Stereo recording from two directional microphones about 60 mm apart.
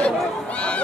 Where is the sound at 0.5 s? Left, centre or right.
Centre.